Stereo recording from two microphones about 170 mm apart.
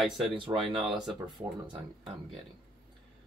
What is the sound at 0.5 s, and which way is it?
Speech, 25° right (ahead or behind).